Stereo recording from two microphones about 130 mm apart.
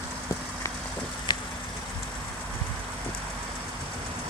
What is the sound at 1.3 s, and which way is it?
Vehicle, 35° left (ahead or behind).